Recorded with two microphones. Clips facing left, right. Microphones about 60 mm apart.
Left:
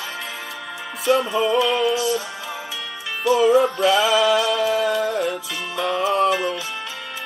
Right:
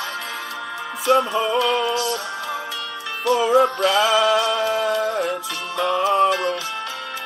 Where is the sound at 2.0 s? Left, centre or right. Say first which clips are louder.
Left 1 dB; right.